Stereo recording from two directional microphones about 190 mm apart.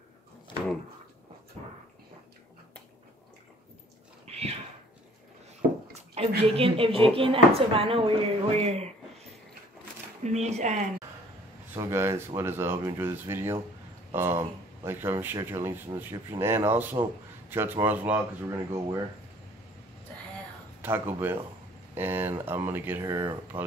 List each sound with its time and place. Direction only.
4.3 s a sound: 30° right (ahead or behind)
6.1 s speech: 30° right (ahead or behind)
10.2 s speech: 35° right (ahead or behind)
11.7 s speech: 15° right (ahead or behind)
20.8 s speech: 10° right (ahead or behind)